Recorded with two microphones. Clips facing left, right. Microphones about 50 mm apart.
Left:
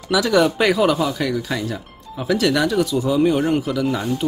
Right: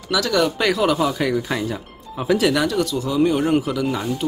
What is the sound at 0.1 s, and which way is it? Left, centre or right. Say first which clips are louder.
Speech: left 3 dB; centre.